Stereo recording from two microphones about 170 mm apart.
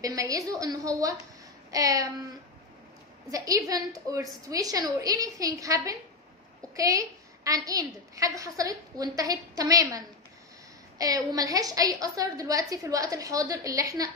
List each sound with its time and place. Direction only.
0.0 s a woman's voice: 20° right (ahead or behind)
3.3 s a woman's voice: 20° right (ahead or behind)